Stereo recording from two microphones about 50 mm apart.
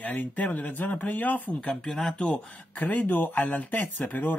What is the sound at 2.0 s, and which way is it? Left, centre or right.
Speech, left.